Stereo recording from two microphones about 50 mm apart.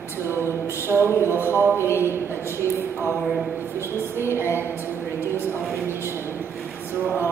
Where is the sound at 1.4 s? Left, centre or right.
Left.